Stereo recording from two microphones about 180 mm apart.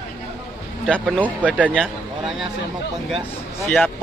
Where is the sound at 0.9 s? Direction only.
Centre (ahead or behind).